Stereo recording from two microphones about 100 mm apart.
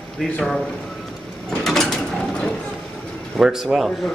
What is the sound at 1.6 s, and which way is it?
Mechanisms, 5° left (ahead or behind).